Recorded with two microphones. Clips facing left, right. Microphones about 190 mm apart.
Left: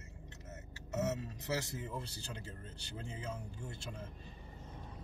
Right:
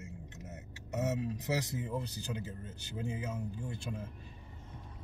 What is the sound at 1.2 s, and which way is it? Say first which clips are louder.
Speech: right 4 dB; 20° right (ahead or behind).